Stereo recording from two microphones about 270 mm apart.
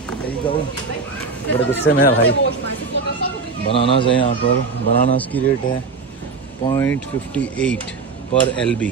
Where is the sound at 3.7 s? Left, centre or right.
Centre.